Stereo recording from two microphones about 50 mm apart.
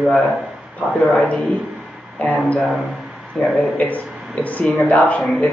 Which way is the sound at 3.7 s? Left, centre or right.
Left.